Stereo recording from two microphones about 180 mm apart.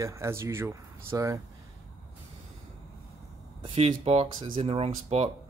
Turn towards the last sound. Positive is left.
turn(degrees=-35)  # may be behind; listen again after turning